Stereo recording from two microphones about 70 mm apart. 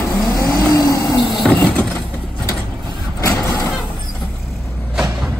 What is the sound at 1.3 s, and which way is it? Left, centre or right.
Vehicle, centre.